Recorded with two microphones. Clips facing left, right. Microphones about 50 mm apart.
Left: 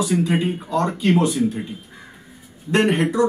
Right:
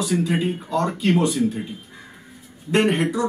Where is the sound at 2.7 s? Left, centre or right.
Centre.